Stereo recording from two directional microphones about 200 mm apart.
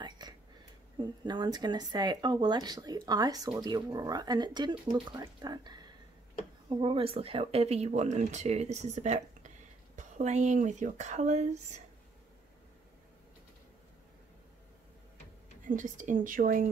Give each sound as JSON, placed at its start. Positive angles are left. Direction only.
{"t": 0.2, "sound": "a sound", "side_deg": -20}
{"t": 0.9, "sound": "speech", "side_deg": -20}
{"t": 15.7, "sound": "speech", "side_deg": -40}